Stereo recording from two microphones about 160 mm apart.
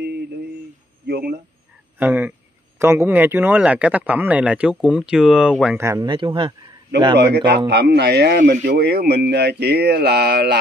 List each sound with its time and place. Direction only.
1.0 s a sound: 90° right
2.0 s speech: 10° right (ahead or behind)
5.8 s speech: 20° right (ahead or behind)
6.0 s speech: 30° right (ahead or behind)
7.2 s speech: 90° right
8.6 s speech: 75° right (ahead or behind)